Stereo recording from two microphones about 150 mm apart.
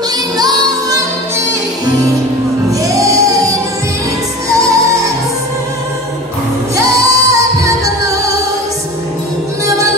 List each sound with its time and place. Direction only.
0.4 s music: 25° right (ahead or behind)
2.7 s music: 20° right (ahead or behind)
4.5 s music: 20° right (ahead or behind)
6.8 s music: 20° right (ahead or behind)